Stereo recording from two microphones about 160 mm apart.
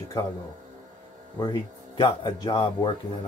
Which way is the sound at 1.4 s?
30° left (ahead or behind).